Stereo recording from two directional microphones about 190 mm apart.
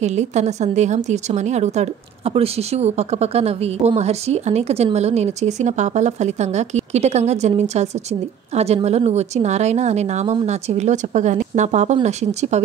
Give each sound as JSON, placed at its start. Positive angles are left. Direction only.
{"t": 0.0, "sound": "a woman's voice", "side_deg": -35}